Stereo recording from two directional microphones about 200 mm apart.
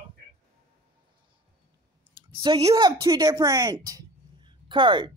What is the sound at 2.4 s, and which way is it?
A woman's voice, 25° right (ahead or behind).